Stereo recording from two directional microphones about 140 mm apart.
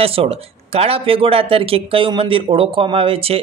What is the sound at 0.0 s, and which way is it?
Speech, 45° right (ahead or behind).